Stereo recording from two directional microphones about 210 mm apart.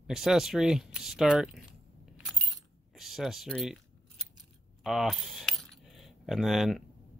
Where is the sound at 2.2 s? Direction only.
Centre (ahead or behind).